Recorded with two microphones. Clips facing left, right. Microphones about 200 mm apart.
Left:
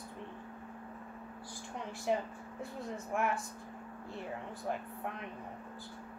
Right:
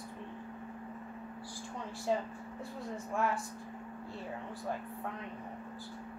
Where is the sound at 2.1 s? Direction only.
15° left (ahead or behind).